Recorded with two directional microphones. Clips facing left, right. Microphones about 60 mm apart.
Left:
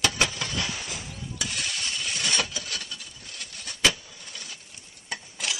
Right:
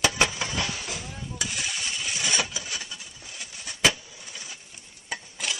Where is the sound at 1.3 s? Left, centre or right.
Centre.